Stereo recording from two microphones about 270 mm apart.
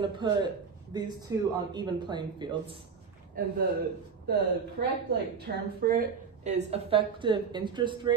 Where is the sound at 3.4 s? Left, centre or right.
Right.